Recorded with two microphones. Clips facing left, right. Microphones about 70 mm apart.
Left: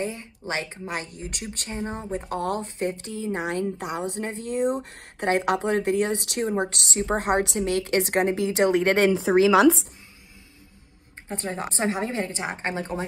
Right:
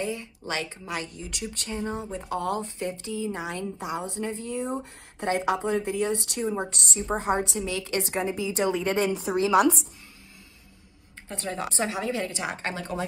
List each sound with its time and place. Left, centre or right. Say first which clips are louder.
0.0 s a woman's voice: left 1 dB; left
2.1 s a woman's voice: left 3 dB; left
11.2 s a woman's voice: left 1 dB; left